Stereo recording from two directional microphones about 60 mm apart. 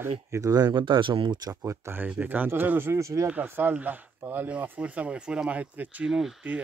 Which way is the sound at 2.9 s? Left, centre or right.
Right.